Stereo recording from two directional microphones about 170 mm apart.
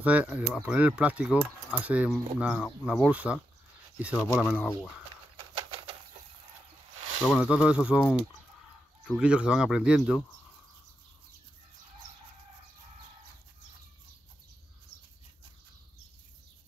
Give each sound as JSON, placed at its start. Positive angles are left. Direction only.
{"t": 0.0, "sound": "speech", "side_deg": -10}
{"t": 4.1, "sound": "speech", "side_deg": 10}
{"t": 5.4, "sound": "bird", "side_deg": -30}
{"t": 7.3, "sound": "speech", "side_deg": -5}